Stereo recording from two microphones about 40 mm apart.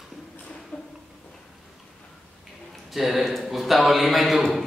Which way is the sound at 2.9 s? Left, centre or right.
Centre.